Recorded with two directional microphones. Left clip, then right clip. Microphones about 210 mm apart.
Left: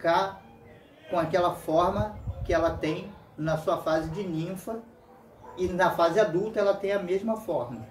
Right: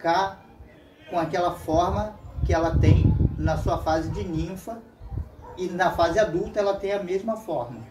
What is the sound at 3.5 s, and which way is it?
Speech, 5° left (ahead or behind).